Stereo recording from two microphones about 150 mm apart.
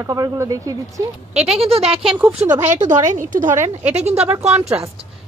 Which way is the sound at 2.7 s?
55° right (ahead or behind).